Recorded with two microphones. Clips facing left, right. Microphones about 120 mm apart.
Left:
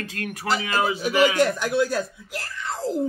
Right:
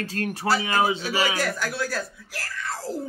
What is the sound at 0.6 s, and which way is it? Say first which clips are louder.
Speech: right 1 dB; 25° right (ahead or behind).